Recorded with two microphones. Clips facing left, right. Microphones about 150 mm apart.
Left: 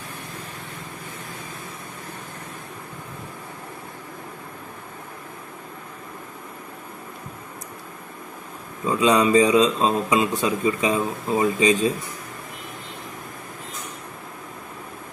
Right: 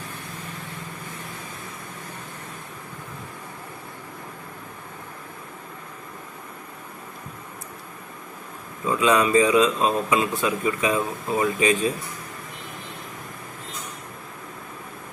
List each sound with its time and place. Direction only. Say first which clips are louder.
8.8 s speech: left 2 dB; 25° left (ahead or behind)